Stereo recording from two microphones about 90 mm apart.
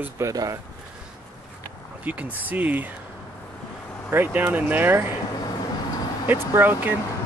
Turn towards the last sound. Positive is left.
turn(degrees=-20)  # may be behind; listen again after turning